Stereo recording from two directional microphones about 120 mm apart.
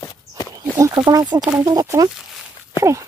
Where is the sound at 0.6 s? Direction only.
35° right (ahead or behind).